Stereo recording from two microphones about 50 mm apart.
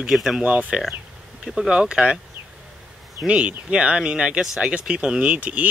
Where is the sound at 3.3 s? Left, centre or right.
Right.